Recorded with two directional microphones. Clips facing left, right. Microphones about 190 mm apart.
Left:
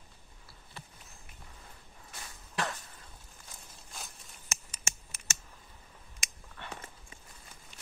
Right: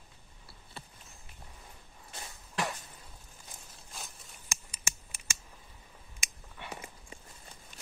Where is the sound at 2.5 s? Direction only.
15° right (ahead or behind).